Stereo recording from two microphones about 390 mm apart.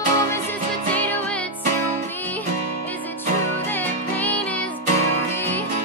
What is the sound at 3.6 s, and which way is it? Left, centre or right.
Music, centre.